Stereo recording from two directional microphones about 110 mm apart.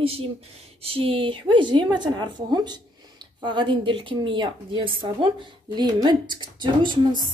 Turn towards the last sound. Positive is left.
turn(degrees=-45)  # may be behind; listen again after turning